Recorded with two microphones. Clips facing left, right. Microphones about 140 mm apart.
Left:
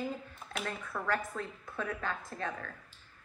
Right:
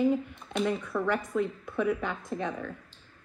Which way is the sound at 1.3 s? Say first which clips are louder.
Right 10 dB; 20° right (ahead or behind).